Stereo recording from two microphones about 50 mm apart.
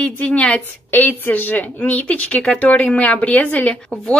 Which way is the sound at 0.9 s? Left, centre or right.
Left.